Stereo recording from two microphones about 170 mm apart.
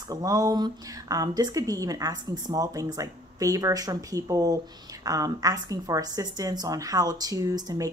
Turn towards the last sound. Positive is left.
turn(degrees=-20)  # may be behind; listen again after turning